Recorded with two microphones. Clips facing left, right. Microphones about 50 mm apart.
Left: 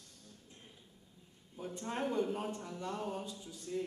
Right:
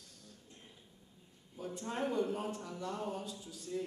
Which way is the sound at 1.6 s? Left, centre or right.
Centre.